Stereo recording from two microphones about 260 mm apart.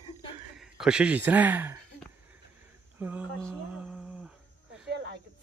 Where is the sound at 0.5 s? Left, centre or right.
Centre.